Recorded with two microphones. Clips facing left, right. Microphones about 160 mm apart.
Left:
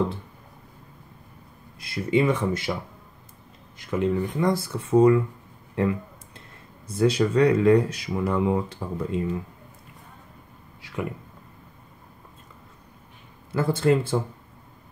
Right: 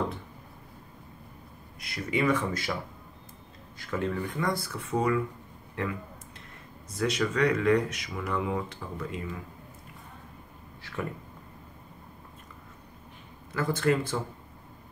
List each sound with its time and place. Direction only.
1.8 s speech: 30° left (ahead or behind)
3.7 s speech: 20° left (ahead or behind)
6.9 s speech: 30° left (ahead or behind)
10.8 s a sound: 15° left (ahead or behind)
13.5 s speech: 30° left (ahead or behind)